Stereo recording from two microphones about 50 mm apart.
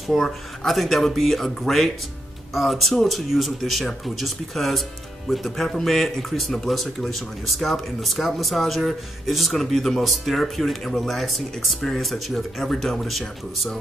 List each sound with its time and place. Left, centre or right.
0.1 s speech: centre